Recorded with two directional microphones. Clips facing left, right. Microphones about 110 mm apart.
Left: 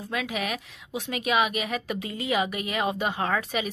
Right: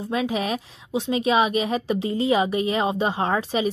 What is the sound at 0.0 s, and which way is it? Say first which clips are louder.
A woman's voice: right 6 dB; 30° right (ahead or behind).